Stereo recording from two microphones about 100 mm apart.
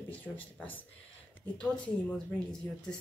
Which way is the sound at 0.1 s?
15° left (ahead or behind).